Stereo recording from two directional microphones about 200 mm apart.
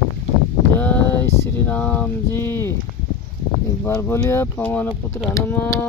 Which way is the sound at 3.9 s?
15° left (ahead or behind).